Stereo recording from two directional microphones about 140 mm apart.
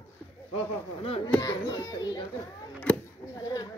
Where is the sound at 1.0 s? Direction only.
45° left (ahead or behind).